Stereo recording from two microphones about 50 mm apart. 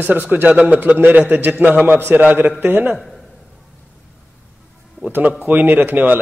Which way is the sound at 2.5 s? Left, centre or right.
Right.